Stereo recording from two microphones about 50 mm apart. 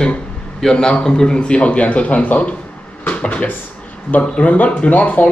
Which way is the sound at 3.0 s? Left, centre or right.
Left.